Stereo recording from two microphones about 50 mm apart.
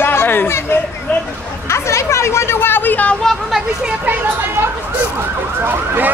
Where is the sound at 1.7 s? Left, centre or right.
Left.